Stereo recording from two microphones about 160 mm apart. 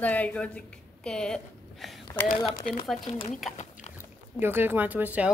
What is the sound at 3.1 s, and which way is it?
Speech, 40° left (ahead or behind).